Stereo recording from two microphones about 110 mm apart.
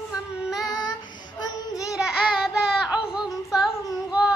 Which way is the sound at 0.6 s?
40° left (ahead or behind).